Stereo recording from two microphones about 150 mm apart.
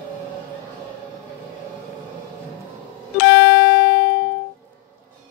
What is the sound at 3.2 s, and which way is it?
Music, 90° left.